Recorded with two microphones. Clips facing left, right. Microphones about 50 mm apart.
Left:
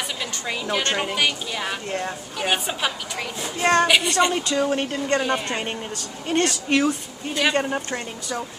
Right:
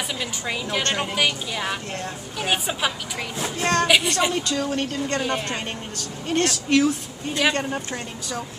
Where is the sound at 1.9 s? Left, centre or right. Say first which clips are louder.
Left 4 dB; centre.